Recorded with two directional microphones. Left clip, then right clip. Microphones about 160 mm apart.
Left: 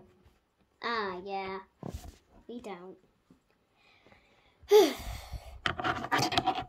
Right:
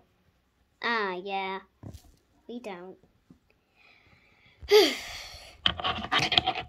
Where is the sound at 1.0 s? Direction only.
40° right (ahead or behind).